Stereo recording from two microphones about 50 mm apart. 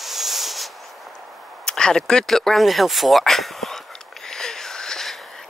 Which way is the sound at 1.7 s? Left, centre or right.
Centre.